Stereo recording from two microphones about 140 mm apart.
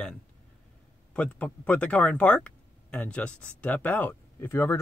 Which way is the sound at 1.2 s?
10° left (ahead or behind).